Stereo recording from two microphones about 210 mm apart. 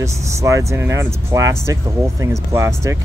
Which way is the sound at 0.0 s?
15° right (ahead or behind).